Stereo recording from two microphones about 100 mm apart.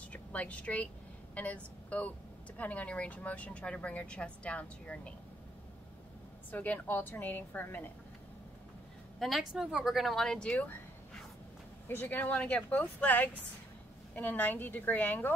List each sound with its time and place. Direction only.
0.1 s speech: 15° left (ahead or behind)
6.5 s a woman's voice: 20° left (ahead or behind)
9.2 s speech: centre (ahead or behind)
11.9 s speech: 20° left (ahead or behind)